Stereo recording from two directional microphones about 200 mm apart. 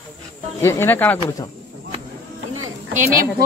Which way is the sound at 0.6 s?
10° left (ahead or behind).